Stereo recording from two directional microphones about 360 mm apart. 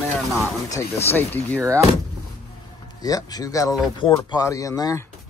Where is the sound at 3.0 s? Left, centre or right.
Centre.